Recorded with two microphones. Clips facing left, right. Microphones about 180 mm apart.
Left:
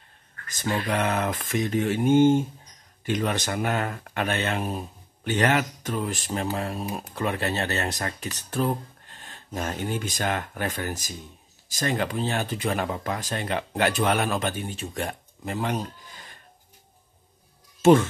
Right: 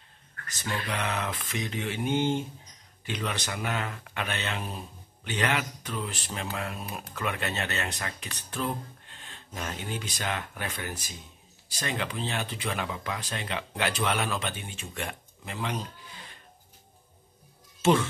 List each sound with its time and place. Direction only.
0.6 s speech: 50° left (ahead or behind)